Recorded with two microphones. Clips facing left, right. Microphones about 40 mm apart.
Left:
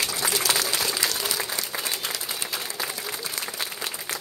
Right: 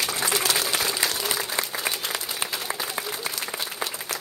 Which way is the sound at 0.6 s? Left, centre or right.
Right.